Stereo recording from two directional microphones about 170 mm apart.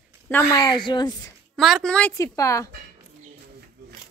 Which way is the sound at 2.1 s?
20° left (ahead or behind).